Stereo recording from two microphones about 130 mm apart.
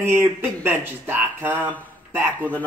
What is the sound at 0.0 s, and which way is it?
Speech, 20° right (ahead or behind).